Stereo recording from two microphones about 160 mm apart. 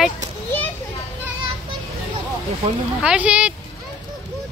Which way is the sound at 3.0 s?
5° right (ahead or behind).